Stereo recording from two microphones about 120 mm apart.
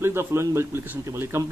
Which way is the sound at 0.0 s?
20° right (ahead or behind).